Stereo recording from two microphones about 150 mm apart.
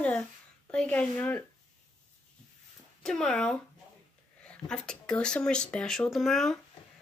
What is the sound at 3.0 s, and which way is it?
Speech, 5° left (ahead or behind).